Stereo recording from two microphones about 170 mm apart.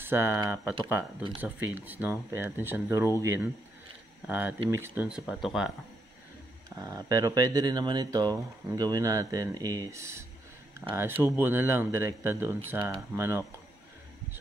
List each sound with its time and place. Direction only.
0.0 s speech: 15° right (ahead or behind)
6.8 s speech: 20° right (ahead or behind)